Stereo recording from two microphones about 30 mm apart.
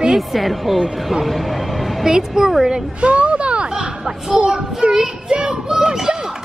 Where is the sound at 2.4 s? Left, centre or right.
Centre.